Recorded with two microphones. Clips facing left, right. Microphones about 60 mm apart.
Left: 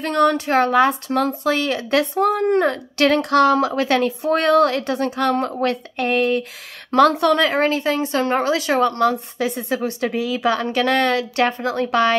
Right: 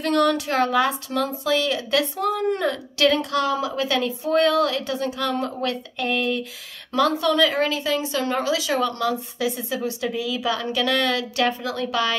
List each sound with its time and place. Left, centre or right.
0.0 s speech: left
3.2 s speech: left
6.9 s speech: left
7.4 s speech: left